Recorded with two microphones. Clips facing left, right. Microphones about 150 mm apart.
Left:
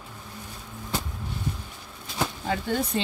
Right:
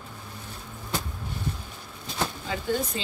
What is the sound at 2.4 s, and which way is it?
Speech, 60° left (ahead or behind).